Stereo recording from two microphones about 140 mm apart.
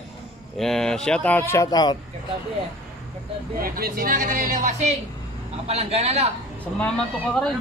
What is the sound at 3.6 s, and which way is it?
A woman's voice, 90° right.